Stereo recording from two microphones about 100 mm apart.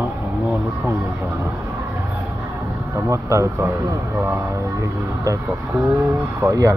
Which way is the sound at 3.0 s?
30° right (ahead or behind).